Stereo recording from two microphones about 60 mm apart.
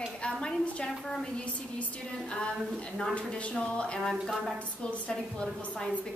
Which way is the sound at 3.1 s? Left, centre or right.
Centre.